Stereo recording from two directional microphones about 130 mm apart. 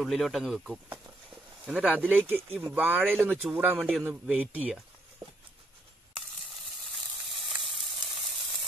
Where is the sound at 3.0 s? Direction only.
Centre (ahead or behind).